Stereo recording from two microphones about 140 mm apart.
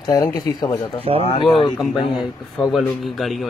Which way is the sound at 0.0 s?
30° left (ahead or behind).